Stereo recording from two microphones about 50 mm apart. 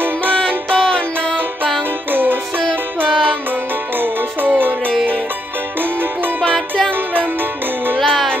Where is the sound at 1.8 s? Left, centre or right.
Right.